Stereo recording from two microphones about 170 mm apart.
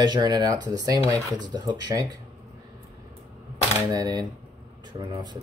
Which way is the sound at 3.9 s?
25° right (ahead or behind).